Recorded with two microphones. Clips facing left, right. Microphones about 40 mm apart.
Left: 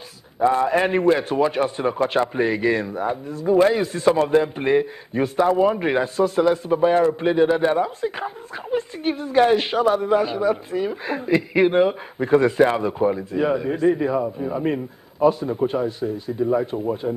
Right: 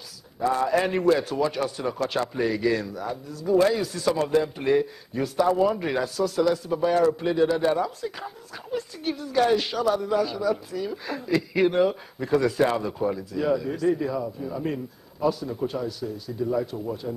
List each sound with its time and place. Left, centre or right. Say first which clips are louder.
0.4 s a man's voice: left 5 dB; left